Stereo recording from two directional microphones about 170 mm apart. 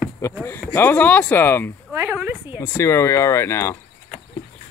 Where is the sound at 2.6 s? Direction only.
15° left (ahead or behind).